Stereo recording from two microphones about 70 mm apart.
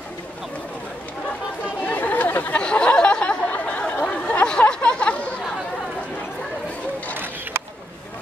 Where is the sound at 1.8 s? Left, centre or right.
Left.